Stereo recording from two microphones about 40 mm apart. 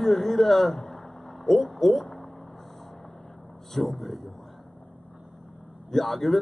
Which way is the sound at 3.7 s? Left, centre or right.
Centre.